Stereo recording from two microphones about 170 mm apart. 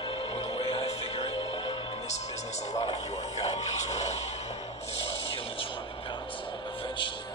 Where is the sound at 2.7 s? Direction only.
35° left (ahead or behind).